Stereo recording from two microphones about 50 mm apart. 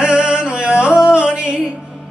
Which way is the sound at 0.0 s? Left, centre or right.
Centre.